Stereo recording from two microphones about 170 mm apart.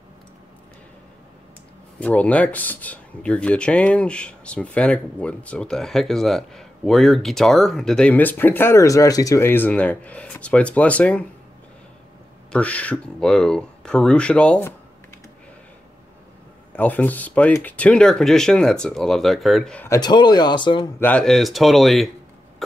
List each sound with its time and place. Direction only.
2.0 s speech: 10° left (ahead or behind)
12.5 s speech: 10° left (ahead or behind)
16.7 s speech: 10° left (ahead or behind)
19.9 s speech: 25° left (ahead or behind)
21.0 s speech: 5° left (ahead or behind)